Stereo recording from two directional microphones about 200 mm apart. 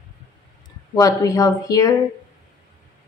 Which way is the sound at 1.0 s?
15° left (ahead or behind).